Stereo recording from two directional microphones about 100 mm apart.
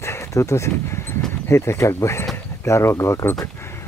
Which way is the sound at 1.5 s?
25° left (ahead or behind).